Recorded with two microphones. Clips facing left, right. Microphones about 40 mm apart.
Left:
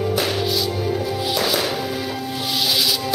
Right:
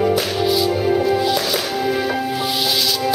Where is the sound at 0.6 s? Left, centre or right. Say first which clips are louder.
Right 6 dB; right.